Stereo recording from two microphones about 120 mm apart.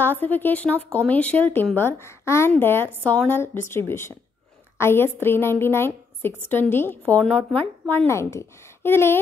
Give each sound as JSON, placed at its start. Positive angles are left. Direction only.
{"t": 0.0, "sound": "a woman's voice", "side_deg": 15}
{"t": 8.1, "sound": "a woman's voice", "side_deg": 25}